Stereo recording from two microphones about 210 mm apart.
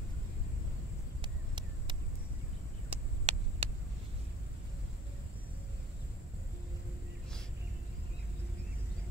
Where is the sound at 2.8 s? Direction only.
30° right (ahead or behind).